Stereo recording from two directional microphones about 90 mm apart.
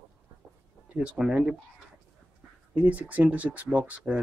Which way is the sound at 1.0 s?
10° right (ahead or behind).